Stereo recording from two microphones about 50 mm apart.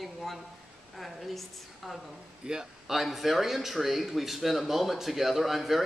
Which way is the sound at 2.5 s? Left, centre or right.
Centre.